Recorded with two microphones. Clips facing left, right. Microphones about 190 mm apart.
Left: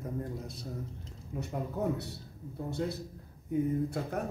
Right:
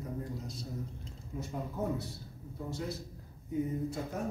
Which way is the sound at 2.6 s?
60° left (ahead or behind).